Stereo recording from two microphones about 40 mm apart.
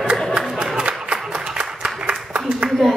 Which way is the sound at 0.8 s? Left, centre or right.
Right.